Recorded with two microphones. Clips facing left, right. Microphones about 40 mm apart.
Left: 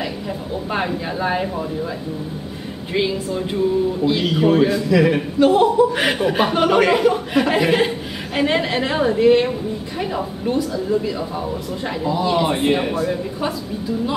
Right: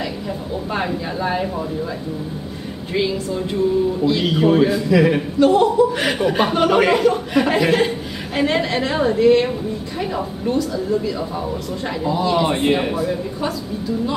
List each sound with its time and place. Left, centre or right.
0.7 s a woman's voice: centre
2.9 s a woman's voice: centre
4.2 s speech: centre
5.4 s a woman's voice: centre
13.1 s a woman's voice: centre